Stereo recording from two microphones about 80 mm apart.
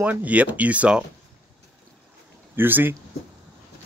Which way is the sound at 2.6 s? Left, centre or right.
Right.